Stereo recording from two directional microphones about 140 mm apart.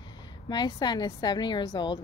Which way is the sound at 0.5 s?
30° left (ahead or behind).